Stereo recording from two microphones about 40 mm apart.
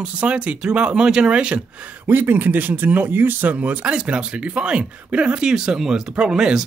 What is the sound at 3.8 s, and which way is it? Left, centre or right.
Speech, right.